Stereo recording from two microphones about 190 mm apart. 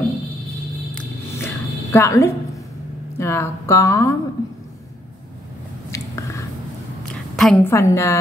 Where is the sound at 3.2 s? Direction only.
15° left (ahead or behind).